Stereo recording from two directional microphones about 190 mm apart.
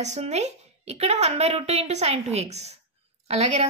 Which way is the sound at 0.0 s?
35° right (ahead or behind).